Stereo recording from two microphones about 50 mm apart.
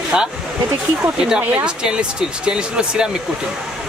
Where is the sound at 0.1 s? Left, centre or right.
Right.